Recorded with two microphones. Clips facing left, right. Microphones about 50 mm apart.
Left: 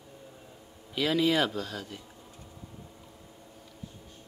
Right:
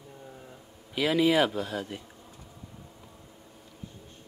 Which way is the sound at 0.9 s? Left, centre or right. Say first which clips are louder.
Right 2 dB; centre.